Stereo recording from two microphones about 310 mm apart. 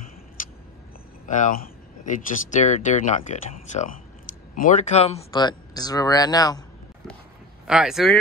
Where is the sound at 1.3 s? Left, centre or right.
Left.